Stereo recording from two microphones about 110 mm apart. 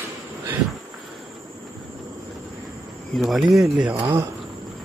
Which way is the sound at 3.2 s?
Centre (ahead or behind).